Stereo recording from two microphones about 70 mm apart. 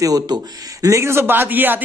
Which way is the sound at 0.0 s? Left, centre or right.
Right.